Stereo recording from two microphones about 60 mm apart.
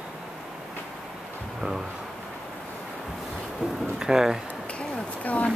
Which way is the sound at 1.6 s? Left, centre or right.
Centre.